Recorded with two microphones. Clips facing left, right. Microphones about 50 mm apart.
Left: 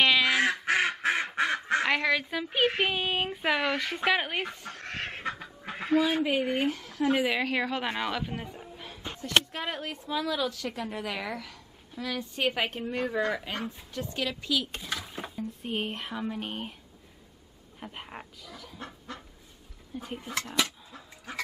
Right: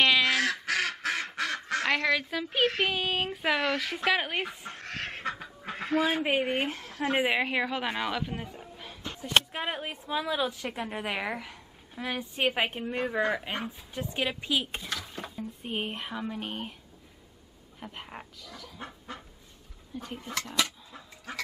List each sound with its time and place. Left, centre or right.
0.0 s duck: centre
0.3 s duck: left
0.7 s quack: left
1.9 s speech: centre
4.8 s duck: centre
6.2 s speech: right
7.6 s a woman's voice: centre
9.2 s speech: centre
14.8 s a sound: centre
15.6 s speech: centre
17.7 s speech: centre
19.1 s duck: centre
20.0 s speech: centre